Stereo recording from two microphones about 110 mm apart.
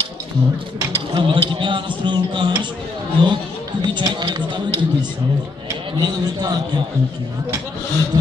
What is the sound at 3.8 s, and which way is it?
Mechanisms, 40° right (ahead or behind).